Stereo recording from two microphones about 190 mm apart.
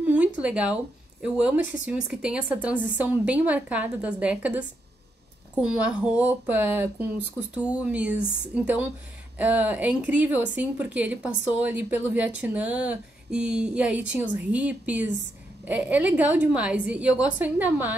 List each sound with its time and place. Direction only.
0.0 s a sound: 10° right (ahead or behind)
1.2 s speech: 5° right (ahead or behind)
2.7 s a woman's voice: 45° left (ahead or behind)
3.0 s speech: 10° right (ahead or behind)
9.4 s speech: 10° right (ahead or behind)